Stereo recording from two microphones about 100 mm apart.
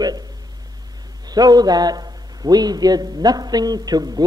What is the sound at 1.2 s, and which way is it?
A man's voice, 40° right (ahead or behind).